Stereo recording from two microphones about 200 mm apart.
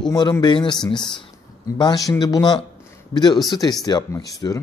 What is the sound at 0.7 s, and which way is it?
Speech, 5° left (ahead or behind).